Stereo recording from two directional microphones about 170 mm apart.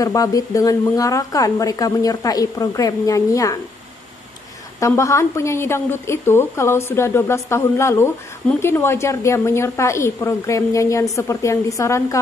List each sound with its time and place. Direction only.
0.0 s a woman's voice: 20° left (ahead or behind)
4.7 s a woman's voice: 15° left (ahead or behind)